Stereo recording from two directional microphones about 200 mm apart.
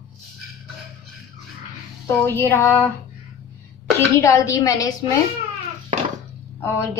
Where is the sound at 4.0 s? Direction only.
15° left (ahead or behind).